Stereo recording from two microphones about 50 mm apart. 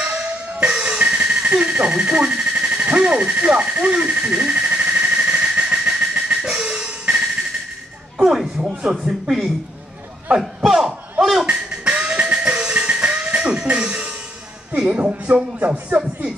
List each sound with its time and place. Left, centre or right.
0.0 s music: right
3.0 s a sound: centre
6.4 s music: centre
8.2 s speech: centre
10.4 s a sound: centre
11.4 s music: centre
14.8 s speech: right